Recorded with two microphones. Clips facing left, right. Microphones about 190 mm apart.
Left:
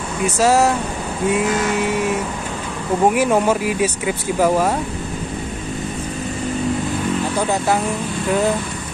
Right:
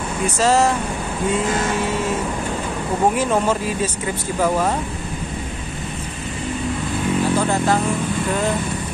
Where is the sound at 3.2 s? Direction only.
10° left (ahead or behind).